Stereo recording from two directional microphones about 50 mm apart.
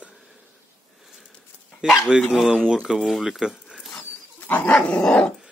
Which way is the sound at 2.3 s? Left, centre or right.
Centre.